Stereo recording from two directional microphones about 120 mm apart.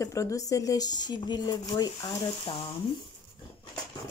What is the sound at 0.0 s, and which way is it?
Speech, 25° left (ahead or behind).